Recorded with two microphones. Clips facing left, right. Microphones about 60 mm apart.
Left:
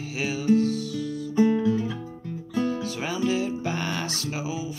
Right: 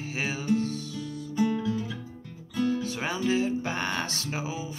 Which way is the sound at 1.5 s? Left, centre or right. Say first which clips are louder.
Left 6 dB; left.